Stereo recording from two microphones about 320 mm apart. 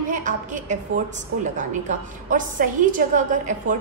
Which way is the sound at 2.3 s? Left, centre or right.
Right.